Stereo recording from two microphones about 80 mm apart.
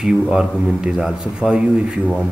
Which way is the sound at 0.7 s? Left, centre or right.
Centre.